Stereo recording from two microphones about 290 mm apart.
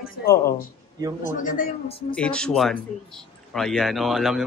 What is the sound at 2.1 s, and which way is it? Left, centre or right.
A child's voice, centre.